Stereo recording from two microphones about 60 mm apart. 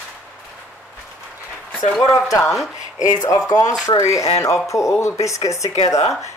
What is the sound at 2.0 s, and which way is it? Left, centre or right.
Speech, left.